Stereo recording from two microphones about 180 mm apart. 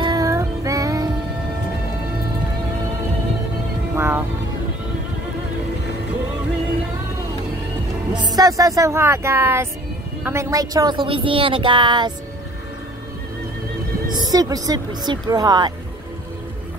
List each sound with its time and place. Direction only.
0.0 s music: 20° right (ahead or behind)
3.9 s music: 15° right (ahead or behind)
8.1 s speech: 25° right (ahead or behind)
14.1 s speech: 20° right (ahead or behind)